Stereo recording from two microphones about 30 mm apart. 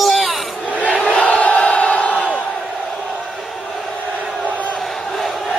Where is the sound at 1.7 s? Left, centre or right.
Left.